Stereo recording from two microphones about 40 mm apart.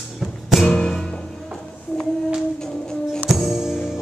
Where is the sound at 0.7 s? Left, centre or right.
Centre.